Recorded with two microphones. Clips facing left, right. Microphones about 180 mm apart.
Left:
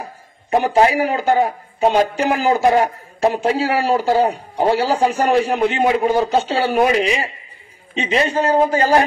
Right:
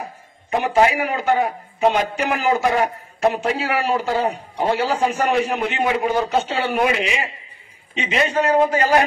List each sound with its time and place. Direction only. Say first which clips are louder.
0.5 s a man's voice: left 3 dB; 35° left (ahead or behind)